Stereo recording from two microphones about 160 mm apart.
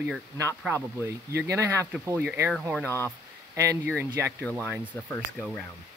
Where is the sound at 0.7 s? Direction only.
15° right (ahead or behind).